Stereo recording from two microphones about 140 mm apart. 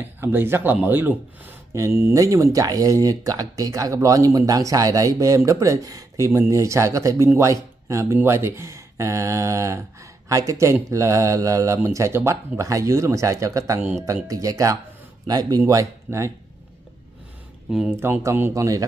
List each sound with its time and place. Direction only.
0.0 s speech: 15° right (ahead or behind)
18.0 s speech: 15° right (ahead or behind)